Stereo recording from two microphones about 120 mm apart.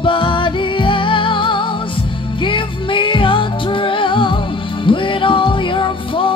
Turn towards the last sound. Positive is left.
turn(degrees=45)  # may be behind; listen again after turning